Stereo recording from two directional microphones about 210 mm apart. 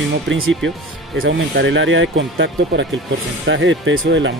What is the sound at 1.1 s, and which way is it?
Speech, 70° right (ahead or behind).